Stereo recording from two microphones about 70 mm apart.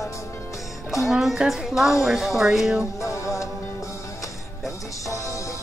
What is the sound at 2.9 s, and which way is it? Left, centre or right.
Music, left.